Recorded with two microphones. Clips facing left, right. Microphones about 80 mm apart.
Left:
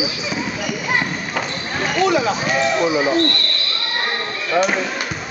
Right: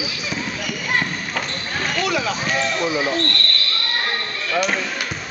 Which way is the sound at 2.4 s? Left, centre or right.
Centre.